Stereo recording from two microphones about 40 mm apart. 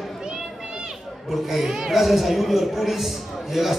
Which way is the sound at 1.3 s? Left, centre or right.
Centre.